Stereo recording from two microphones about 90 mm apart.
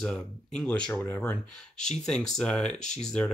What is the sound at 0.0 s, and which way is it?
Speech, 10° left (ahead or behind).